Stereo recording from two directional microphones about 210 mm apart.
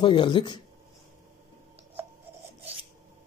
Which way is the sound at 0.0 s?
20° left (ahead or behind).